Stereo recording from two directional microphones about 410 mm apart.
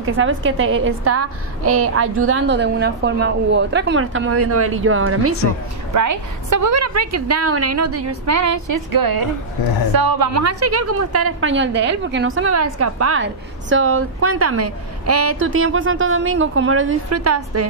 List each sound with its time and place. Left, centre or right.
0.0 s a woman's voice: right
5.9 s a woman's voice: right
10.3 s a woman's voice: right